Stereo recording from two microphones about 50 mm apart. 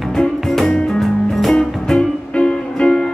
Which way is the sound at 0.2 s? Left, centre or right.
Centre.